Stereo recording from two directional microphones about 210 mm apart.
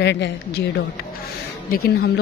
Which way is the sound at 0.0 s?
55° left (ahead or behind).